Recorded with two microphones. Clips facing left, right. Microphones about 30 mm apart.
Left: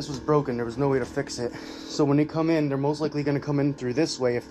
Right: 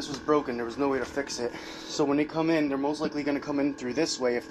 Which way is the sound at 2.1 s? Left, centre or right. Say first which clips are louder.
Left 3 dB; right.